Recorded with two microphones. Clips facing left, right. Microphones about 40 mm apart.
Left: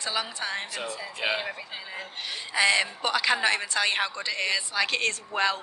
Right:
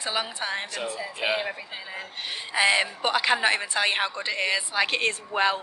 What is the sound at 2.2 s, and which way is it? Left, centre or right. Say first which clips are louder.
A woman's voice: right 1 dB; centre.